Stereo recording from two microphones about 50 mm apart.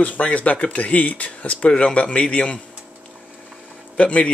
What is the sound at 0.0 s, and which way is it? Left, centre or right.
Speech, left.